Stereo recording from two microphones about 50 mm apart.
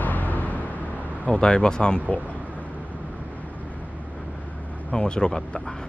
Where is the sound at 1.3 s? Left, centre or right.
Centre.